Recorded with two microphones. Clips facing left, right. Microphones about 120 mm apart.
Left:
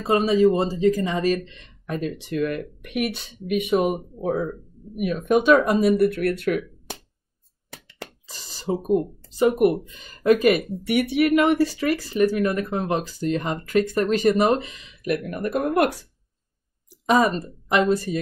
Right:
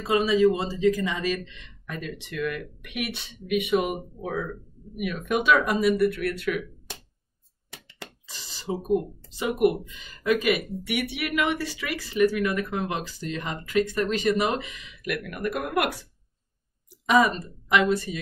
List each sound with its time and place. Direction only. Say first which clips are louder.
0.0 s speech: left 3 dB; 45° left (ahead or behind)
7.7 s a sound: left 4 dB; 45° left (ahead or behind)
9.4 s speech: left 5 dB; 40° left (ahead or behind)
17.0 s a woman's voice: left 2 dB; 40° left (ahead or behind)